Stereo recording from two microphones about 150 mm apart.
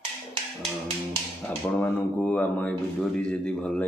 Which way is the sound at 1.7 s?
10° left (ahead or behind).